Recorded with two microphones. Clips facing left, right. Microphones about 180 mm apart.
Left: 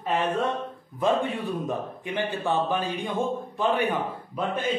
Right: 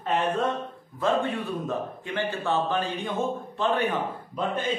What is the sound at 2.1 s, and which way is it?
Speech, 15° left (ahead or behind).